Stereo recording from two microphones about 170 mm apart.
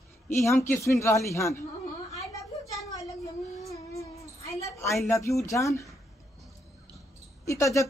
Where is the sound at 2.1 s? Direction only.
20° left (ahead or behind).